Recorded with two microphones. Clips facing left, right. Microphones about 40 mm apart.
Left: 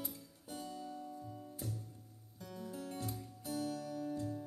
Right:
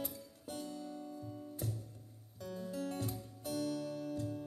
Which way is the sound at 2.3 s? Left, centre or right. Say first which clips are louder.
Right 4 dB; right.